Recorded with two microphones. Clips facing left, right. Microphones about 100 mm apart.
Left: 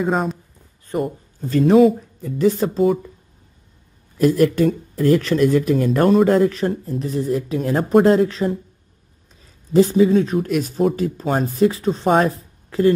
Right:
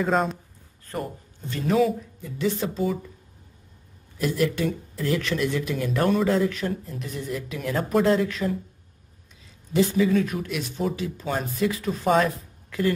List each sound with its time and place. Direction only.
0.1 s a man's voice: centre (ahead or behind)
1.5 s speech: 35° left (ahead or behind)
4.2 s speech: 45° left (ahead or behind)
10.5 s speech: 45° left (ahead or behind)